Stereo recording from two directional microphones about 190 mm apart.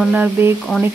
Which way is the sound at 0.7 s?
5° left (ahead or behind).